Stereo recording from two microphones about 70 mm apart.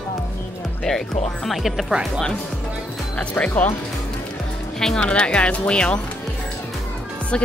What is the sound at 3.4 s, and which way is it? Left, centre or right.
Speech, left.